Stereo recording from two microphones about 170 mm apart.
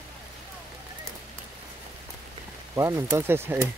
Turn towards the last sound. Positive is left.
turn(degrees=-15)  # may be behind; listen again after turning